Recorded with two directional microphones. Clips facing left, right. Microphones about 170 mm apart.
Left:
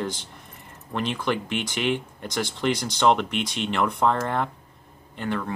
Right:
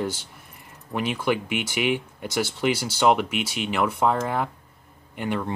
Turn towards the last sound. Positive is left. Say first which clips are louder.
# right 1 dB
turn(degrees=-15)  # may be behind; listen again after turning